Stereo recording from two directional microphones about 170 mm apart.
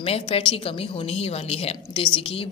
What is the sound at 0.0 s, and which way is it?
A woman's voice, 35° left (ahead or behind).